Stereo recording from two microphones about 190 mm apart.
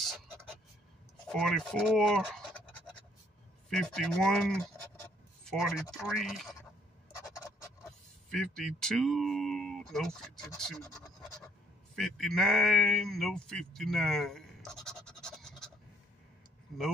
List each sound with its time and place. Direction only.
0.3 s a sound: 15° right (ahead or behind)
1.2 s scratch: centre (ahead or behind)
3.7 s speech: 5° left (ahead or behind)
5.0 s scratch: 5° left (ahead or behind)
6.0 s speech: centre (ahead or behind)
7.1 s scrape: 15° left (ahead or behind)
8.3 s speech: centre (ahead or behind)
11.9 s speech: centre (ahead or behind)